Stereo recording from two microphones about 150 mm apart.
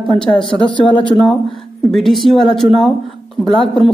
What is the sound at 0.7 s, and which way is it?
Speech, 35° left (ahead or behind).